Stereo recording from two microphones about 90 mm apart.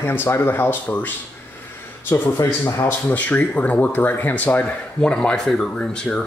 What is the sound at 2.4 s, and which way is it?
Speech, 30° left (ahead or behind).